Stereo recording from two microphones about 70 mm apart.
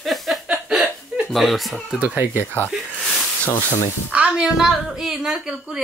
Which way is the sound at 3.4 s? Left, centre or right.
Left.